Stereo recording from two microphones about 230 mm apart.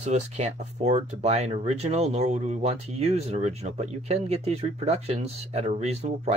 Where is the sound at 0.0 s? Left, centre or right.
Right.